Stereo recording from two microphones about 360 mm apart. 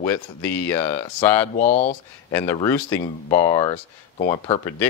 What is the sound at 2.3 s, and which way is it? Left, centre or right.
Speech, centre.